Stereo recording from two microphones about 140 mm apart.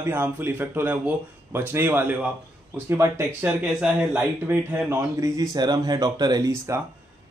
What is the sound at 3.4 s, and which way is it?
A man's voice, 5° right (ahead or behind).